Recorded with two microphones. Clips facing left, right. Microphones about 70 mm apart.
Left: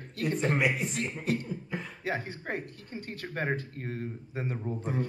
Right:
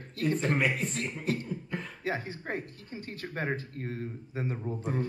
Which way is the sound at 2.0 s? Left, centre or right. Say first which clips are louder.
Even; left.